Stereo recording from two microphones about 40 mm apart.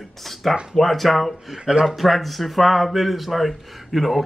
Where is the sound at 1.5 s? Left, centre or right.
Centre.